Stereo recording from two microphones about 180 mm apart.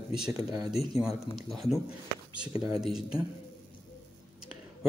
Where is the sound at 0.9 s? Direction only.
Centre (ahead or behind).